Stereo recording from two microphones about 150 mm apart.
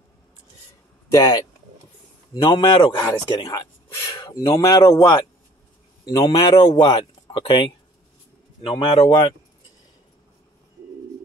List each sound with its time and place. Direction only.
1.1 s a man's voice: 20° left (ahead or behind)
2.4 s a man's voice: 25° left (ahead or behind)
8.6 s speech: 35° left (ahead or behind)